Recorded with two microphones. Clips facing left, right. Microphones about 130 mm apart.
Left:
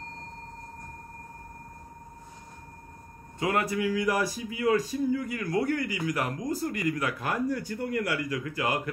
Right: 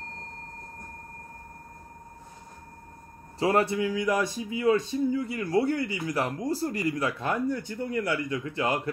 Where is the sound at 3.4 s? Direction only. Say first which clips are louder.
Right 3 dB; 30° right (ahead or behind).